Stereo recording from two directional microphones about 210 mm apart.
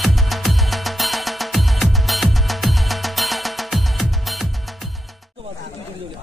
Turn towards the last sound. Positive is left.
turn(degrees=0)  # may be behind; listen again after turning